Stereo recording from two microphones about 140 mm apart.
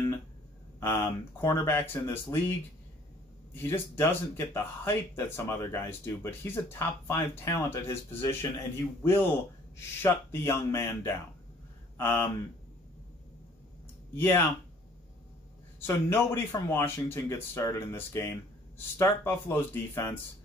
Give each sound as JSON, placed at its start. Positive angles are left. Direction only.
{"t": 0.7, "sound": "speech", "side_deg": 20}
{"t": 3.5, "sound": "speech", "side_deg": 15}
{"t": 14.1, "sound": "speech", "side_deg": 15}
{"t": 15.9, "sound": "speech", "side_deg": 20}